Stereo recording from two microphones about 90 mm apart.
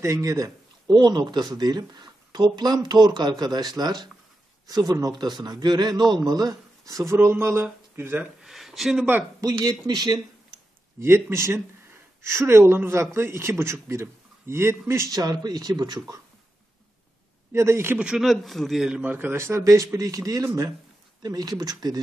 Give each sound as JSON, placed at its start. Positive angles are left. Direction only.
{"t": 0.0, "sound": "speech", "side_deg": -40}
{"t": 0.8, "sound": "speech", "side_deg": -55}
{"t": 8.4, "sound": "a sound", "side_deg": -5}
{"t": 9.4, "sound": "speech", "side_deg": -50}
{"t": 11.0, "sound": "a man's voice", "side_deg": -30}
{"t": 15.1, "sound": "speech", "side_deg": -50}
{"t": 17.5, "sound": "a man's voice", "side_deg": -30}
{"t": 17.9, "sound": "speech", "side_deg": -10}
{"t": 18.9, "sound": "speech", "side_deg": -20}